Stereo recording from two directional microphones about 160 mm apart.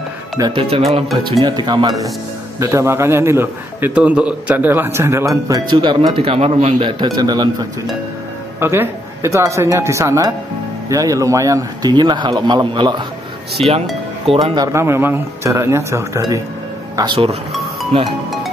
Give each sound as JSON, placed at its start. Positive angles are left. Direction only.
{"t": 0.4, "sound": "speech", "side_deg": -35}
{"t": 2.6, "sound": "a man's voice", "side_deg": -15}
{"t": 8.5, "sound": "a man's voice", "side_deg": -15}